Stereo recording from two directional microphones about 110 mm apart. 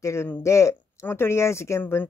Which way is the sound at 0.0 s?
25° left (ahead or behind).